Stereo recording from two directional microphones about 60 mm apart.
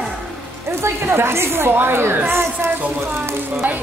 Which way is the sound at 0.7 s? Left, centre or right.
Right.